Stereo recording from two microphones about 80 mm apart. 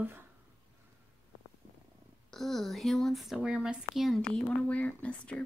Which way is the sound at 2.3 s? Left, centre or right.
Centre.